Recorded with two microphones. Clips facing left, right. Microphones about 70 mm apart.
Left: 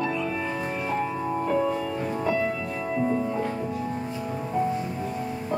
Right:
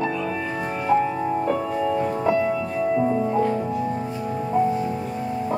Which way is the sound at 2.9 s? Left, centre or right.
Centre.